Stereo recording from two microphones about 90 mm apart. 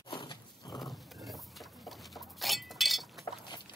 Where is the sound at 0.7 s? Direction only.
Centre (ahead or behind).